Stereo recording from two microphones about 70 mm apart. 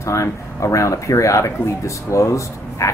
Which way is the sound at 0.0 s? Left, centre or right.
Left.